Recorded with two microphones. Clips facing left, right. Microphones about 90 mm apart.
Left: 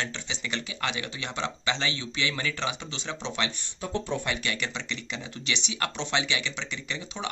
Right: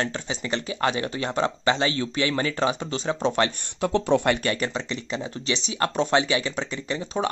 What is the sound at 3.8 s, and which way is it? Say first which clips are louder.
Speech: right 10 dB; 80° right.